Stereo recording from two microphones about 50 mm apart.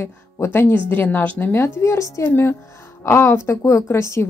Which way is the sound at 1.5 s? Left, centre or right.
Left.